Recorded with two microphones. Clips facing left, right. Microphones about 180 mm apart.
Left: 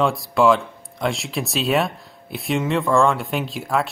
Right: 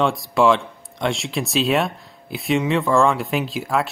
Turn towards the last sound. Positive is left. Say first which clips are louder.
# right 1 dB
turn(degrees=0)  # may be behind; listen again after turning